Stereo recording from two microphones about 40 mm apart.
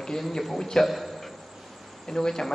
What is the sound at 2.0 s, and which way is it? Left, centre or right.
Speech, centre.